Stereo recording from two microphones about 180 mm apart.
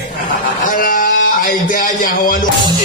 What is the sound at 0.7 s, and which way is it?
A man's voice, 50° left (ahead or behind).